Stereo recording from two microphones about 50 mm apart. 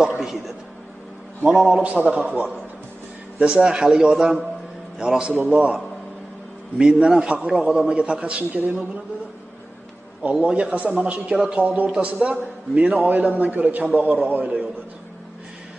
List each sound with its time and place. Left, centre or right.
0.2 s a man's voice: centre
1.4 s a man's voice: right
6.8 s a man's voice: centre
10.2 s a man's voice: right